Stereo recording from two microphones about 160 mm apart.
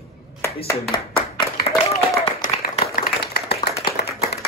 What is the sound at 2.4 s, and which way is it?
Clapping, 65° left (ahead or behind).